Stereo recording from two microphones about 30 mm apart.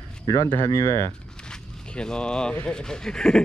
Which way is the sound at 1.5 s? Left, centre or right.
Left.